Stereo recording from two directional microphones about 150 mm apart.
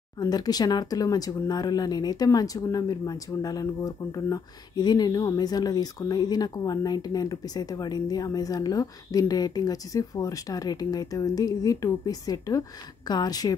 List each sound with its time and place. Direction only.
0.2 s speech: 25° left (ahead or behind)